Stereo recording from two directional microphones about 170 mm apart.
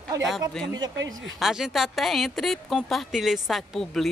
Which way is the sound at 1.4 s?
Centre (ahead or behind).